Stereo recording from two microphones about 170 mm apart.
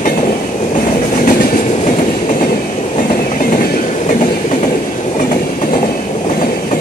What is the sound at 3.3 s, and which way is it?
Train, 55° left (ahead or behind).